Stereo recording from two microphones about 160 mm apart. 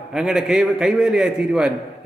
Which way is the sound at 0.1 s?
5° right (ahead or behind).